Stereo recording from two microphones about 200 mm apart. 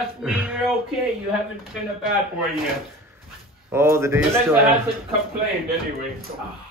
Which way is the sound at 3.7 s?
10° right (ahead or behind).